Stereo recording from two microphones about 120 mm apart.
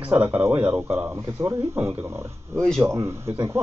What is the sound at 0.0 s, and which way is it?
Speech, 10° right (ahead or behind).